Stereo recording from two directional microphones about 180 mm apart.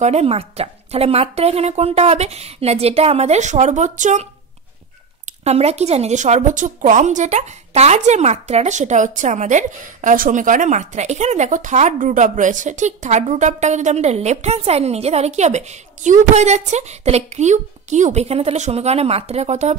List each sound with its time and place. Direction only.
0.0 s speech: 35° right (ahead or behind)